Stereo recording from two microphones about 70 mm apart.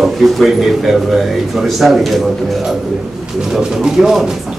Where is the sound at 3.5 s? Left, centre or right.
Centre.